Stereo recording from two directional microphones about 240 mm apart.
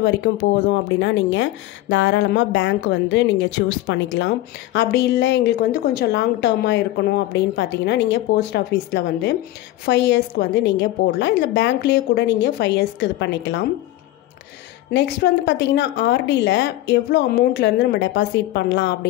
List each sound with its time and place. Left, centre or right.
0.0 s speech: left
14.9 s speech: left